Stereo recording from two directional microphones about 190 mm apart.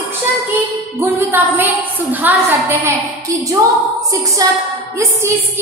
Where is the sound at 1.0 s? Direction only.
10° right (ahead or behind).